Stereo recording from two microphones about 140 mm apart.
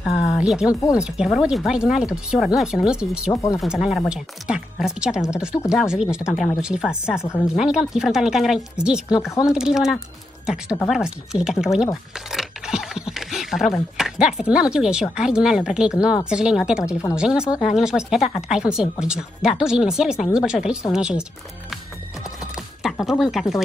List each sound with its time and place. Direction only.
0.0 s a sound: 5° right (ahead or behind)
0.9 s speech: 5° right (ahead or behind)
23.0 s speech: centre (ahead or behind)